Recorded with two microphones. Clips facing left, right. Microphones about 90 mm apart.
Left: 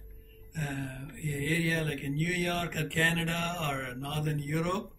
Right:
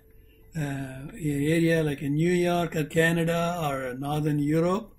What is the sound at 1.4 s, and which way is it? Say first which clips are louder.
A man's voice: right 8 dB; 25° right (ahead or behind).